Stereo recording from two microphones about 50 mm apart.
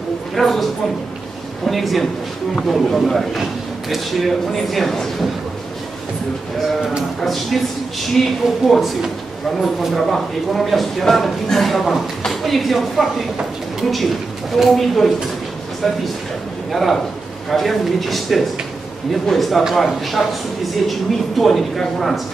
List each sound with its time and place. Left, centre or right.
0.3 s a woman's voice: centre
1.7 s speech: centre
7.2 s speech: centre
16.7 s speech: centre